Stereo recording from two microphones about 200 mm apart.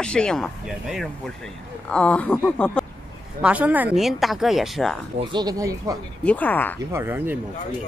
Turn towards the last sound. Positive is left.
turn(degrees=-10)  # may be behind; listen again after turning